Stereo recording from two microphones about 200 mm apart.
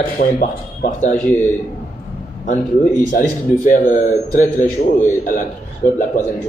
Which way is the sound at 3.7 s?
40° left (ahead or behind).